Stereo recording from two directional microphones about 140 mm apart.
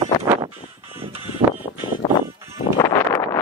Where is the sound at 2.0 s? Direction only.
30° left (ahead or behind).